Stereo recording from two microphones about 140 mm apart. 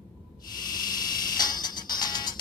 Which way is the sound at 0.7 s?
30° left (ahead or behind).